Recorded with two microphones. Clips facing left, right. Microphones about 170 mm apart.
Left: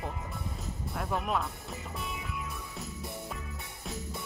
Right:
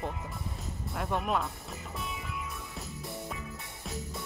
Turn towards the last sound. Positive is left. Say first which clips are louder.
# even
turn(degrees=0)  # may be behind; listen again after turning